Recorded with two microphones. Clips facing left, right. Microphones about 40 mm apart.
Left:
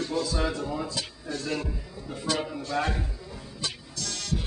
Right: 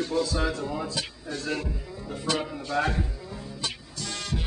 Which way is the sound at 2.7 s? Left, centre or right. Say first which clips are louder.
Right 2 dB; centre.